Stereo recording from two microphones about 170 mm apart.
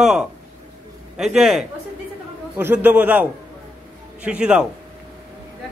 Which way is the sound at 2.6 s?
10° right (ahead or behind).